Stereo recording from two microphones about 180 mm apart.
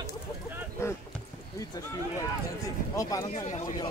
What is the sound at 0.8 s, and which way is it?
Rowboat, 15° left (ahead or behind).